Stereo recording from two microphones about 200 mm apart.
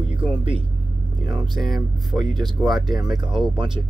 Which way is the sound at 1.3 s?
Centre (ahead or behind).